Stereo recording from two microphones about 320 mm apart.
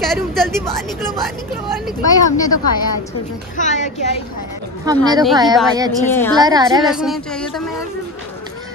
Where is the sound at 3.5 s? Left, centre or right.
Left.